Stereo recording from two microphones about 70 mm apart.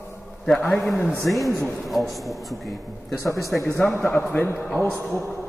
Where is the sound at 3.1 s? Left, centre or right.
Left.